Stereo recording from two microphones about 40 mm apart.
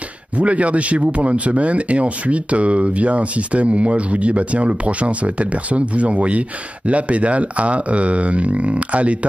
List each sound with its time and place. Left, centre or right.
0.4 s speech: right